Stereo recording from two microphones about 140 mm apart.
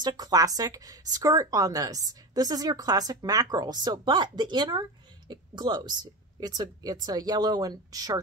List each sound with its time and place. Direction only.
0.0 s speech: 25° right (ahead or behind)